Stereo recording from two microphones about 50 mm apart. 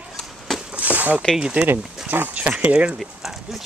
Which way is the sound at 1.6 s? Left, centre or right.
Right.